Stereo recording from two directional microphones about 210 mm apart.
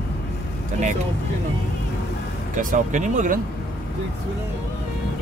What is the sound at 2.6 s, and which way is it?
Speech, 40° right (ahead or behind).